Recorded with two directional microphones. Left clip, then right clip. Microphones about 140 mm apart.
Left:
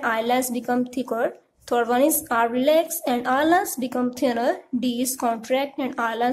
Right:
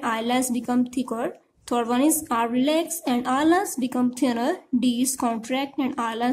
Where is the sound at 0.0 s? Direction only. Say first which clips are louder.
Left 3 dB; 20° right (ahead or behind).